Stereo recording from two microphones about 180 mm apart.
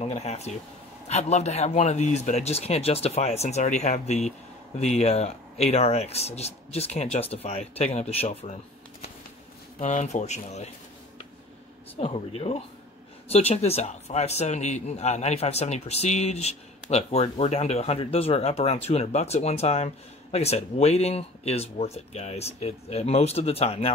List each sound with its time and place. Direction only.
0.0 s speech: 35° left (ahead or behind)
9.8 s speech: 40° left (ahead or behind)
12.0 s speech: 30° left (ahead or behind)